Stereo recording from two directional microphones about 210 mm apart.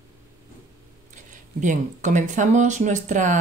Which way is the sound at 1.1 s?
35° right (ahead or behind).